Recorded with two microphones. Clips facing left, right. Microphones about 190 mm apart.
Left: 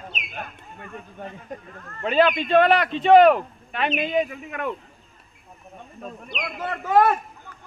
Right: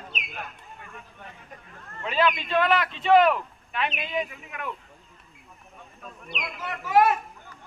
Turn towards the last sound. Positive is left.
turn(degrees=55)  # may be behind; listen again after turning